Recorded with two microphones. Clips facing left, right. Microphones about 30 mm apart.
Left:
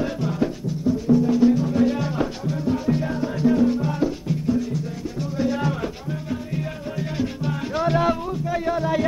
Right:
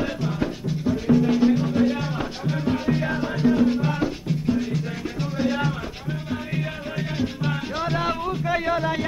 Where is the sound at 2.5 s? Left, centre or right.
Right.